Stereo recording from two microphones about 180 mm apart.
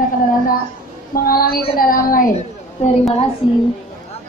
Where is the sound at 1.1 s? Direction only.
55° left (ahead or behind).